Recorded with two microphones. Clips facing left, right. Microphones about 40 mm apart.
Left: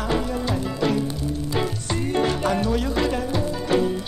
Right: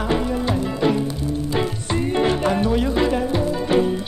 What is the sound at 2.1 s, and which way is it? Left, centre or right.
Music, centre.